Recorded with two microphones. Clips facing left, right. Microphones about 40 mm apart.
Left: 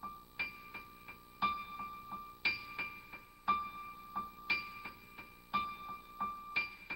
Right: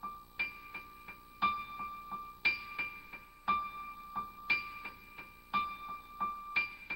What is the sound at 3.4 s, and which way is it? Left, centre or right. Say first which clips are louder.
Music: right 1 dB; centre.